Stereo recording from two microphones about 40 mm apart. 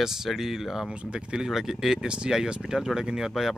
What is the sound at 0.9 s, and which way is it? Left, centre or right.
Speech, right.